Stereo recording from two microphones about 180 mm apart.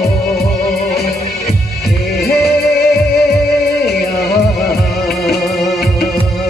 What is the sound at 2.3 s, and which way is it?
Music, 60° left (ahead or behind).